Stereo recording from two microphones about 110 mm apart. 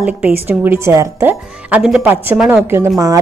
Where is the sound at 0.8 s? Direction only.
25° right (ahead or behind).